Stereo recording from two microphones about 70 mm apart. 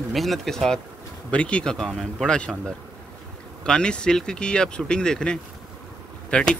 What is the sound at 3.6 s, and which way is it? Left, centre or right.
Speech, centre.